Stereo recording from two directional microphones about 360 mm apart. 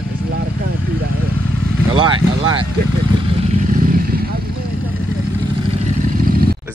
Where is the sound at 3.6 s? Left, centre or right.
Right.